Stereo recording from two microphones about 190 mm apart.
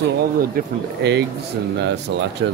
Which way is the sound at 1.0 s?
60° right (ahead or behind).